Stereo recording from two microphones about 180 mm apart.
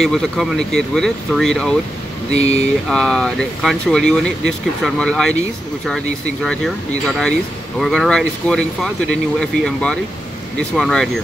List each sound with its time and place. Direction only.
0.0 s speech: centre (ahead or behind)
2.3 s speech: 40° left (ahead or behind)
2.9 s speech: centre (ahead or behind)
6.4 s speech: 5° left (ahead or behind)